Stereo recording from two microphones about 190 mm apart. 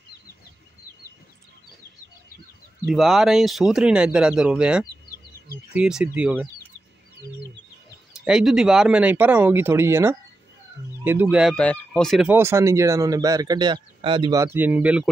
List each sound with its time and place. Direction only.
2.9 s speech: centre (ahead or behind)
8.1 s speech: 5° right (ahead or behind)
11.5 s speech: 5° left (ahead or behind)
12.3 s speech: 15° right (ahead or behind)